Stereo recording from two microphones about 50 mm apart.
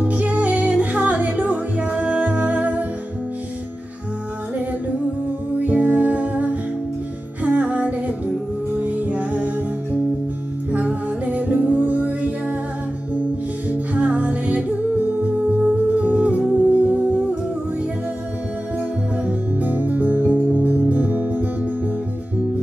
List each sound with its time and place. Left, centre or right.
0.0 s music: right
5.6 s music: right
10.7 s music: right
13.7 s music: right
19.2 s music: right